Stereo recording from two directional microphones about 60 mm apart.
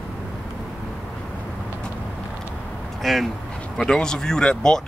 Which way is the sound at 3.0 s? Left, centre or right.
Centre.